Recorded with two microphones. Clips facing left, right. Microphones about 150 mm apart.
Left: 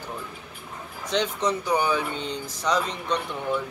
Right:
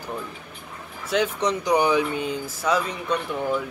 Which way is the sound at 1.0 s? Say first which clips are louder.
Right 2 dB; 10° right (ahead or behind).